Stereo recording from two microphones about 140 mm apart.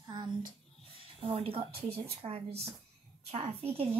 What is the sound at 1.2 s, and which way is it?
A child's voice, 40° right (ahead or behind).